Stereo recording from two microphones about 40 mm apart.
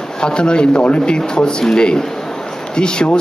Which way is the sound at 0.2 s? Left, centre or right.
Left.